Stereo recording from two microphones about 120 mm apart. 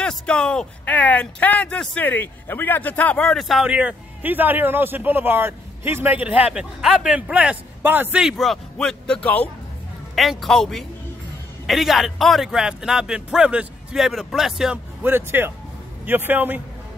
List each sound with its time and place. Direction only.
0.0 s speech: 5° left (ahead or behind); by 8.2 s 15° right (ahead or behind)
8.2 s speech: centre (ahead or behind)
10.1 s speech: centre (ahead or behind)
15.0 s a man's voice: 15° right (ahead or behind)